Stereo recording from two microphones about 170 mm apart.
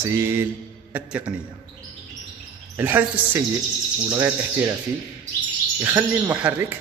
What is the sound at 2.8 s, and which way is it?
Speech, 10° right (ahead or behind).